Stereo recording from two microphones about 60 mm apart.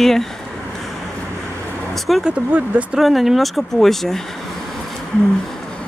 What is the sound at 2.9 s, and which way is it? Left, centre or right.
Speech, centre.